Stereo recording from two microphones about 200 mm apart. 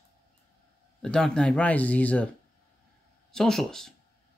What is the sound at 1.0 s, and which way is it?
Speech, 5° left (ahead or behind).